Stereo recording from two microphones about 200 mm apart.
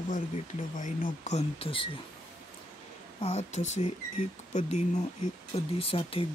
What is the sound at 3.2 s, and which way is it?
Speech, 35° left (ahead or behind).